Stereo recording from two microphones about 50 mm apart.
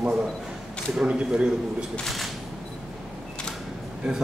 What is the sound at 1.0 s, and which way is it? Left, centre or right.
Speech, right.